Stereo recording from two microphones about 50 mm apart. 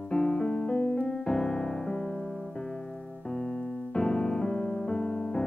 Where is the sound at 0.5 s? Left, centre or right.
Centre.